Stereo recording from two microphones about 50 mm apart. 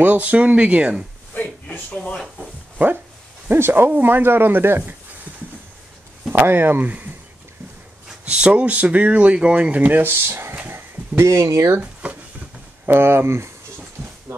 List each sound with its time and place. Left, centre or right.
0.0 s speech: right
1.3 s a sound: left
3.4 s speech: right
6.3 s speech: right
8.5 s speech: right
10.7 s speech: right
11.8 s speech: right
12.8 s speech: right
14.0 s a sound: right